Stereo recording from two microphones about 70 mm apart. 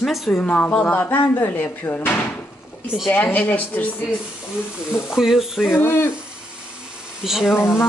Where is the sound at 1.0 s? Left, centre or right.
Left.